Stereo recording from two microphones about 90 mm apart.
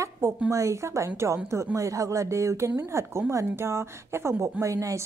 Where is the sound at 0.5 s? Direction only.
35° right (ahead or behind).